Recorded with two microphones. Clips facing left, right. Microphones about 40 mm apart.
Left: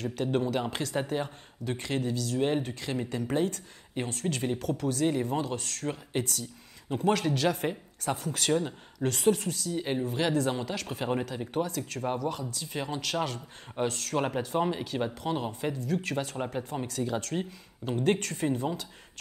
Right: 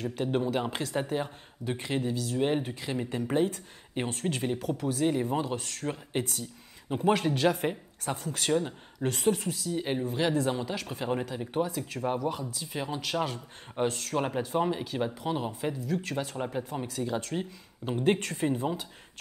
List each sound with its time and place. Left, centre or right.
0.0 s speech: centre
4.1 s speech: right
4.4 s speech: centre
6.9 s speech: centre
10.9 s speech: centre
11.2 s speech: centre